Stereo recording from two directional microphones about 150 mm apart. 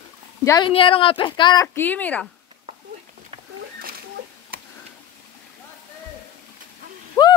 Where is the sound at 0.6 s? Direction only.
35° left (ahead or behind).